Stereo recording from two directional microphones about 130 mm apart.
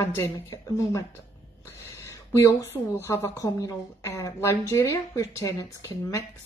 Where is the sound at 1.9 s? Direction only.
25° left (ahead or behind).